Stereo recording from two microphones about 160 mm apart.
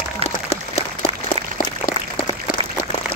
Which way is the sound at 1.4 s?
35° right (ahead or behind).